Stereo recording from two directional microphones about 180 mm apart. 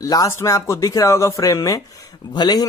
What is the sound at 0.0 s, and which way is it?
A man's voice, 20° left (ahead or behind).